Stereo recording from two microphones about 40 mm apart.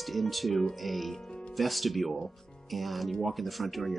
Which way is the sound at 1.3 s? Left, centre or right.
Left.